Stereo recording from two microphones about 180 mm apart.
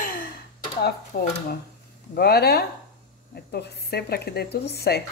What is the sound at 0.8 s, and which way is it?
Speech, 60° left (ahead or behind).